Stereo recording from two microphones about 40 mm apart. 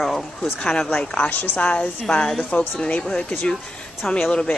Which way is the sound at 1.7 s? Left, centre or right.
Left.